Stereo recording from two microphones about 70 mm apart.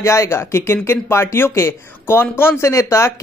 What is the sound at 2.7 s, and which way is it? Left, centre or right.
Speech, left.